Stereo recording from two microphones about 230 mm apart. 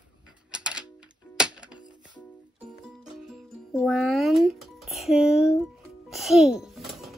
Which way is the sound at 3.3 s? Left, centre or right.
Centre.